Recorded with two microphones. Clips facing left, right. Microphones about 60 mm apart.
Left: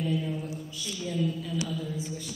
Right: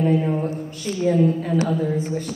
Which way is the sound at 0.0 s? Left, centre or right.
Right.